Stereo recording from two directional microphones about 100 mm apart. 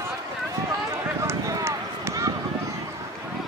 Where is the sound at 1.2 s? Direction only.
30° right (ahead or behind).